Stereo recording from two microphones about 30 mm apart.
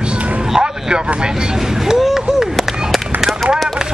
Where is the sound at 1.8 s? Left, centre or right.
Centre.